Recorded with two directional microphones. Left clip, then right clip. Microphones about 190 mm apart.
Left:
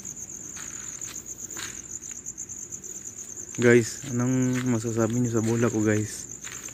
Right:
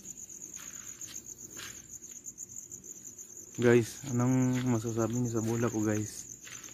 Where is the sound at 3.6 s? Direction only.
10° right (ahead or behind).